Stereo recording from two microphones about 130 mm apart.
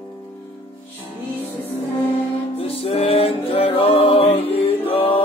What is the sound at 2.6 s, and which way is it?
Music, 50° left (ahead or behind).